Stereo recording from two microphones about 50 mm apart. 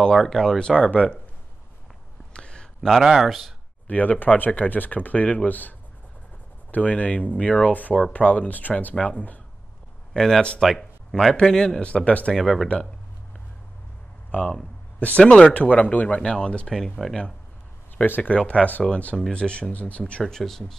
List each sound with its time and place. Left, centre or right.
0.0 s speech: centre
2.3 s a sound: centre
3.0 s speech: centre
3.8 s speech: left
10.1 s speech: centre
10.6 s speech: centre; by 12.4 s left
12.4 s speech: centre
14.3 s speech: left
15.2 s speech: centre
15.5 s speech: left
16.2 s speech: centre
16.6 s speech: centre
18.0 s speech: left
18.3 s speech: left; by 20.7 s centre